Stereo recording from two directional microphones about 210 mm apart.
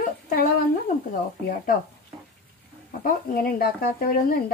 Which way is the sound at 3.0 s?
45° left (ahead or behind).